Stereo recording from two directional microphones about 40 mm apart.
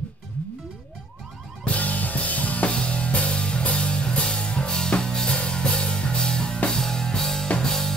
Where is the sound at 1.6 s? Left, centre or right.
Left.